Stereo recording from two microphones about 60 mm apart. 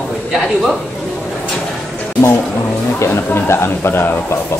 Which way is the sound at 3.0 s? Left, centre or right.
Left.